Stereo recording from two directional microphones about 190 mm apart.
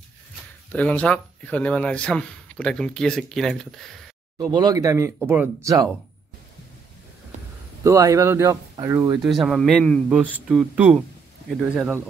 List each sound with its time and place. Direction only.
0.7 s a man's voice: 10° left (ahead or behind)
4.6 s speech: 20° right (ahead or behind)
7.8 s speech: 15° right (ahead or behind)
9.2 s a man's voice: centre (ahead or behind)